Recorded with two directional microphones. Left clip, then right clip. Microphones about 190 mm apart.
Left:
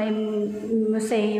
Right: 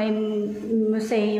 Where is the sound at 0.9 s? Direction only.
5° right (ahead or behind).